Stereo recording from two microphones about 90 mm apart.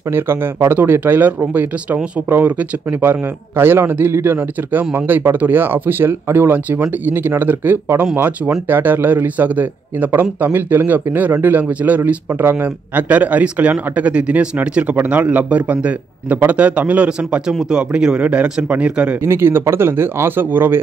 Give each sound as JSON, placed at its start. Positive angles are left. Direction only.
{"t": 0.1, "sound": "a man's voice", "side_deg": -25}
{"t": 19.2, "sound": "a man's voice", "side_deg": -25}